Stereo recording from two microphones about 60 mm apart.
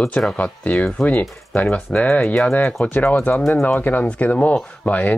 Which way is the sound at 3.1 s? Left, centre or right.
Left.